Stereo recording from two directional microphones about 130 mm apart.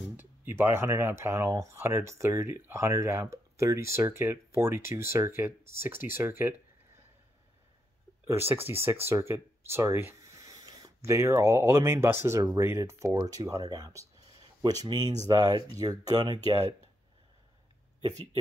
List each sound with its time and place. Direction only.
0.1 s speech: 15° right (ahead or behind)
8.3 s speech: 20° right (ahead or behind)